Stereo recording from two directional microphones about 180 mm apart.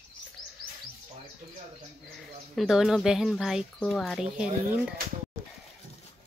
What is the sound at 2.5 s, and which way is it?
Speech, centre (ahead or behind).